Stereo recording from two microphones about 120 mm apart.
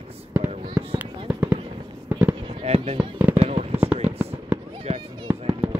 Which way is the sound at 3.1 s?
15° right (ahead or behind).